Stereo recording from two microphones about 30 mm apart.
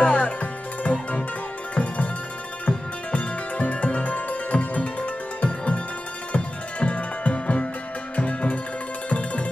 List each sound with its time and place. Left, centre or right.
0.0 s music: left
2.6 s music: left